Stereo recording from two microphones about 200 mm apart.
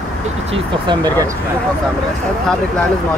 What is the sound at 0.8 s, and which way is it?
Speech, 20° right (ahead or behind).